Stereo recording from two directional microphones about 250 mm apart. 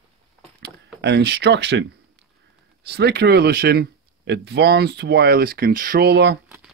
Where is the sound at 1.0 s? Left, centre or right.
Right.